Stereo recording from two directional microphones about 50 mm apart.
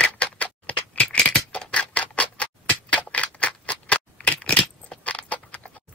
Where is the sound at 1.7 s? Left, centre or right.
Left.